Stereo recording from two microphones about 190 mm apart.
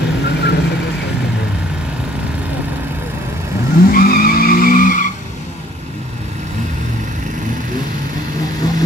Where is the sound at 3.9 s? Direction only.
50° left (ahead or behind).